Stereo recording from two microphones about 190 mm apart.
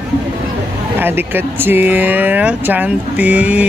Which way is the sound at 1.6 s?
10° right (ahead or behind).